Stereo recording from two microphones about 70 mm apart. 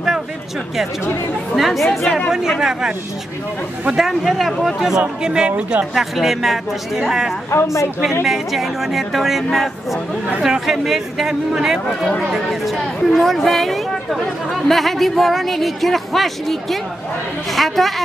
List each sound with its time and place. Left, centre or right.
1.5 s speech: centre
5.9 s speech: centre
7.5 s a woman's voice: left
8.2 s speech: centre